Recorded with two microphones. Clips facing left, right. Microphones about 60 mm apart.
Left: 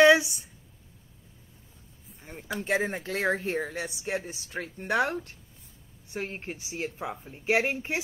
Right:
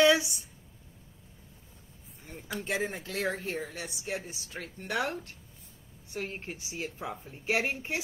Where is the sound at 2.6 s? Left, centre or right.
Left.